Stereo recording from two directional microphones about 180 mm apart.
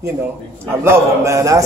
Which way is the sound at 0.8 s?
15° right (ahead or behind).